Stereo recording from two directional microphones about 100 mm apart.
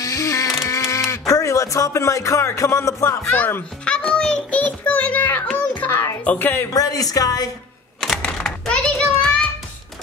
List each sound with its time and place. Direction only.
0.0 s a sound: 30° left (ahead or behind)
1.3 s speech: 30° left (ahead or behind)
3.3 s a child's voice: 15° left (ahead or behind)
6.7 s speech: 35° left (ahead or behind)
8.0 s typewriter: 5° left (ahead or behind)